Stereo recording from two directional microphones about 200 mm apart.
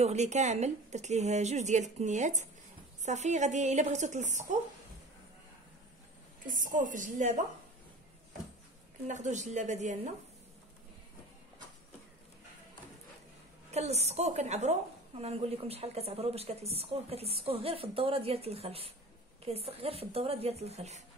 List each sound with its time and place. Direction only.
0.0 s a woman's voice: 35° right (ahead or behind)
6.4 s a woman's voice: 40° right (ahead or behind)
9.0 s a woman's voice: 35° right (ahead or behind)
13.7 s a woman's voice: 30° right (ahead or behind)